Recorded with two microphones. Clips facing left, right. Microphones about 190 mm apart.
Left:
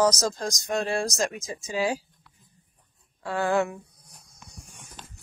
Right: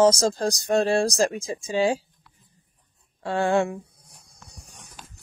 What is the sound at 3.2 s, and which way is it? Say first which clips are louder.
Speech: right 3 dB; 25° right (ahead or behind).